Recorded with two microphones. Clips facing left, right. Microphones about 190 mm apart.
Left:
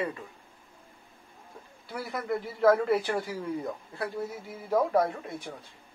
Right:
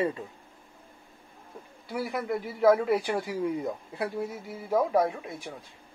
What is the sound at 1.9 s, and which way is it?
Speech, 15° right (ahead or behind).